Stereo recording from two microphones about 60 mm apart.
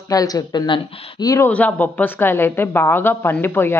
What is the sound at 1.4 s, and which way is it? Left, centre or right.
A woman's voice, left.